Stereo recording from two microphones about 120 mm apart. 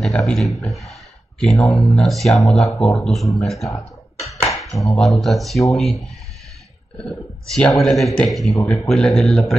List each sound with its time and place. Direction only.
0.0 s speech: 5° left (ahead or behind)
3.7 s a sound: 25° left (ahead or behind)
4.9 s speech: centre (ahead or behind)